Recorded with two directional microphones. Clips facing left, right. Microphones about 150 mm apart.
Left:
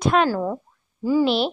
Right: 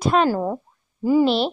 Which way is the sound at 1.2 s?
Centre (ahead or behind).